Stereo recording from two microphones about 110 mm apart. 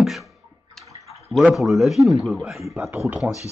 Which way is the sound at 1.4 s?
Centre (ahead or behind).